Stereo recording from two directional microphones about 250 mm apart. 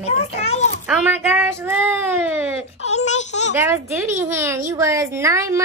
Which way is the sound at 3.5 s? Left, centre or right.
Centre.